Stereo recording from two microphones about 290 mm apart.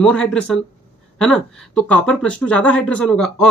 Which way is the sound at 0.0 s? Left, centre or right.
Centre.